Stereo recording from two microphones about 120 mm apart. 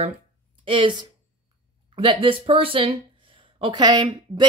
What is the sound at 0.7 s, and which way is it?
A woman's voice, 45° right (ahead or behind).